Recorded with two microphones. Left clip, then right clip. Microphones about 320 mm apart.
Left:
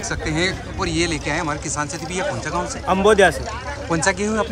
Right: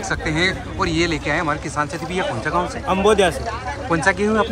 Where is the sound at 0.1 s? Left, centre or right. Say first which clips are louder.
Right 2 dB; centre.